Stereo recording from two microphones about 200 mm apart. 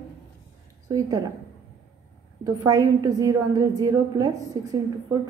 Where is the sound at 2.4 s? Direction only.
15° right (ahead or behind).